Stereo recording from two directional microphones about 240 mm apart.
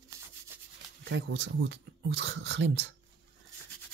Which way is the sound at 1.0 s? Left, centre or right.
Right.